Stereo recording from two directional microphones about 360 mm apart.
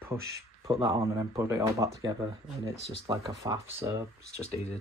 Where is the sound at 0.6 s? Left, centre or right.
Centre.